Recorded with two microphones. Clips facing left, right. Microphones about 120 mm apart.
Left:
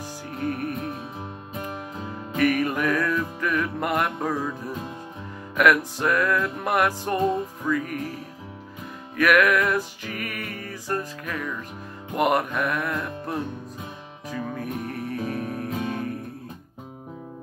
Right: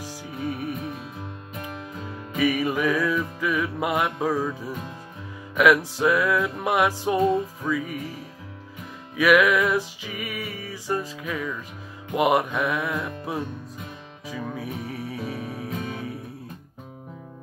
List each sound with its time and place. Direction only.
0.0 s music: 5° right (ahead or behind)
2.3 s music: 5° right (ahead or behind)
5.9 s music: 5° right (ahead or behind)
9.1 s music: 5° right (ahead or behind)